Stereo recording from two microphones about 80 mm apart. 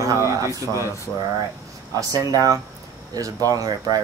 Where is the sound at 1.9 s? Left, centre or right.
Right.